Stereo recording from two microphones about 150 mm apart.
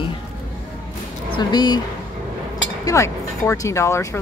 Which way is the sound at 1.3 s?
30° left (ahead or behind).